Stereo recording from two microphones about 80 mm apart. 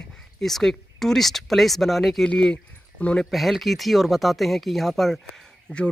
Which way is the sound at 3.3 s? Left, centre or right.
Centre.